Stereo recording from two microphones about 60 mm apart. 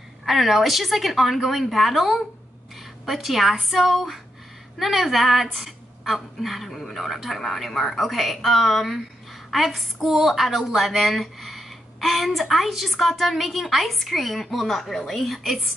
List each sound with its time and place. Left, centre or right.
0.2 s speech: centre